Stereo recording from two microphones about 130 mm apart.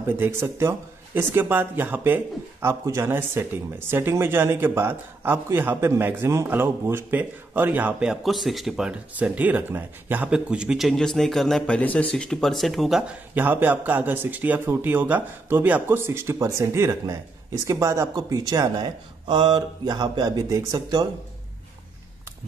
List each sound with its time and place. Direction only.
0.0 s speech: 15° right (ahead or behind); by 13.0 s centre (ahead or behind)
13.3 s speech: 15° right (ahead or behind)